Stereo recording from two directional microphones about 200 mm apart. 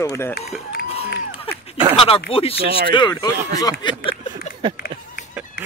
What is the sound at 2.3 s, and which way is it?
Speech, 30° left (ahead or behind).